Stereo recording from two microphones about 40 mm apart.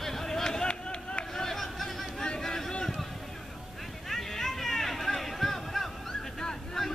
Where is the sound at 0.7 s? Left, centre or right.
Left.